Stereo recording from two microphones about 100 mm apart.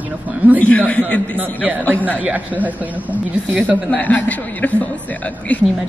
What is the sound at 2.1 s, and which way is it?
A woman's voice, 15° right (ahead or behind).